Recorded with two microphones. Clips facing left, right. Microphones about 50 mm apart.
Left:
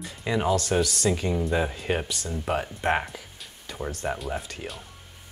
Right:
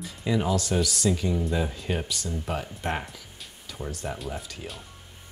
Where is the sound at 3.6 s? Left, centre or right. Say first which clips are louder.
Left 3 dB; centre.